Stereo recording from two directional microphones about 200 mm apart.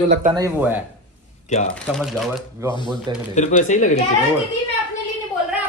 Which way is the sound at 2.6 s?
15° right (ahead or behind).